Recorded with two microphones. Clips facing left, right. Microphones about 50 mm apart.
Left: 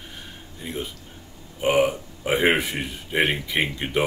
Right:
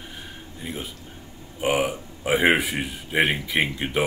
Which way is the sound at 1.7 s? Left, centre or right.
Centre.